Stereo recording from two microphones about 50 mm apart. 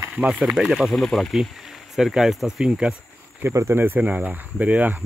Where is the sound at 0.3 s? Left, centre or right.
Centre.